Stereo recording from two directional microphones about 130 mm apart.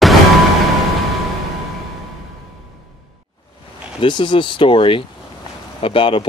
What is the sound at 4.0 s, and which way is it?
Speech, 40° left (ahead or behind).